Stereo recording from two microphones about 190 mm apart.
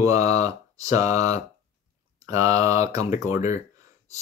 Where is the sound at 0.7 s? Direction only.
20° right (ahead or behind).